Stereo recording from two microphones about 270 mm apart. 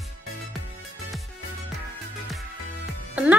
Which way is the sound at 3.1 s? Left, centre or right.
Centre.